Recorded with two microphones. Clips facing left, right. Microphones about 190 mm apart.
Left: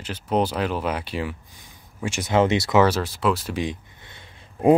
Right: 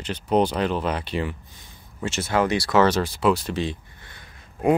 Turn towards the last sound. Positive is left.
turn(degrees=25)  # may be behind; listen again after turning